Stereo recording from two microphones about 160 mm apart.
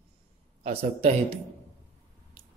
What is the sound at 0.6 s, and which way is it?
Speech, 40° right (ahead or behind).